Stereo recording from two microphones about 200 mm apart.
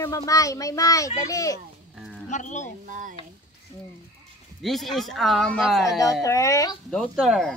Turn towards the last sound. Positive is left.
turn(degrees=0)  # may be behind; listen again after turning